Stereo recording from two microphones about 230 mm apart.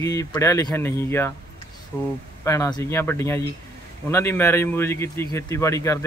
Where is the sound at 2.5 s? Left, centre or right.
Centre.